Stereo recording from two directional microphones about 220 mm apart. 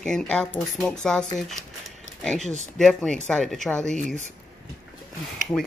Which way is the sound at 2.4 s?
30° right (ahead or behind).